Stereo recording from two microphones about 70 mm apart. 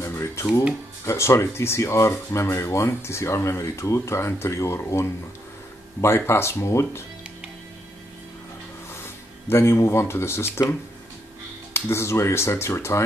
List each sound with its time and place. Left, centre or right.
0.0 s a sound: left
1.0 s speech: left
8.9 s speech: left
11.7 s speech: left